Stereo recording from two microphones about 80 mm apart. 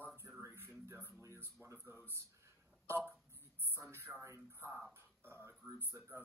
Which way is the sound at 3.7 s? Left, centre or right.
Right.